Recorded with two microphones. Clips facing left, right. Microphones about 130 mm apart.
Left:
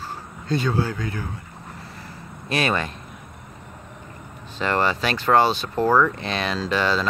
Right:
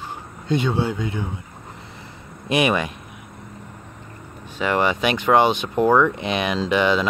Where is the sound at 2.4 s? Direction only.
15° right (ahead or behind).